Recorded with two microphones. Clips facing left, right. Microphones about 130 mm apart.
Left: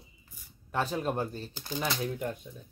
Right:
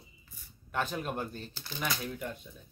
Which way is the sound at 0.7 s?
30° left (ahead or behind).